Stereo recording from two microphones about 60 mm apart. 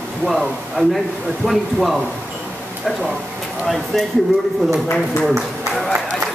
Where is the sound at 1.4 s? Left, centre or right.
Centre.